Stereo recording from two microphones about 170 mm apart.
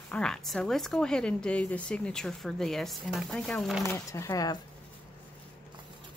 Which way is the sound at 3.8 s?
15° left (ahead or behind).